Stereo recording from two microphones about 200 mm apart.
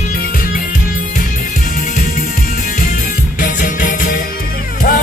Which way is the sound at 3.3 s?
40° left (ahead or behind).